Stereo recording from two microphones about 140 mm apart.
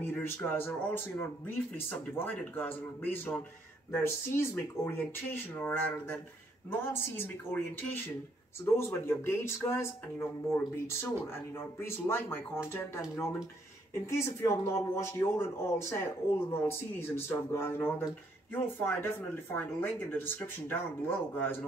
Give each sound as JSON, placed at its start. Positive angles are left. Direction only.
{"t": 0.0, "sound": "speech", "side_deg": 15}